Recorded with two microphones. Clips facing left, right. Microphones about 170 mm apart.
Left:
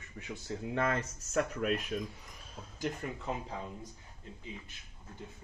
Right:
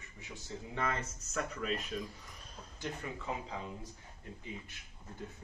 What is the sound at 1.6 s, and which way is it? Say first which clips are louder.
Speech: left 3 dB; 55° left (ahead or behind).